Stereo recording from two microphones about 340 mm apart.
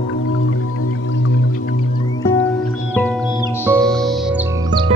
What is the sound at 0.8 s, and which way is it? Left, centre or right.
Music, left.